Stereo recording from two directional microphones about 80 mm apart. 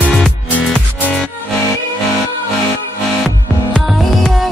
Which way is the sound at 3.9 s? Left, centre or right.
Centre.